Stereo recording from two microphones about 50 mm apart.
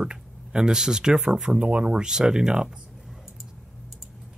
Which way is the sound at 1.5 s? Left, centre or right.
Right.